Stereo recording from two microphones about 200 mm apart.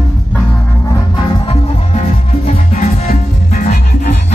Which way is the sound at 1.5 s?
35° left (ahead or behind).